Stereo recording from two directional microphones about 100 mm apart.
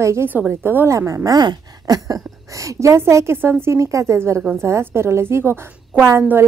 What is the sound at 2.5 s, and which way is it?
A woman's voice, 30° right (ahead or behind).